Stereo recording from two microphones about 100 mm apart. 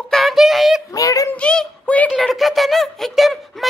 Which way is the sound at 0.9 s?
35° left (ahead or behind).